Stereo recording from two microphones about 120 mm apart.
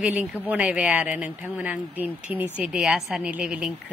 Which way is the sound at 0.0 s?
10° right (ahead or behind).